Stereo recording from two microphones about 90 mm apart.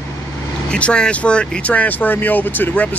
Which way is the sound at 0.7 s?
10° left (ahead or behind).